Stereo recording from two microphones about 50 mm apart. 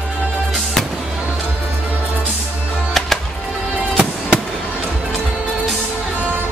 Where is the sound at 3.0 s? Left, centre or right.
Centre.